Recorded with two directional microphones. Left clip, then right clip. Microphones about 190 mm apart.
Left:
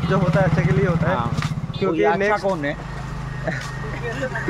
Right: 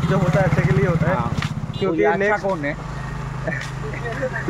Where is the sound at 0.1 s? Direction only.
10° left (ahead or behind).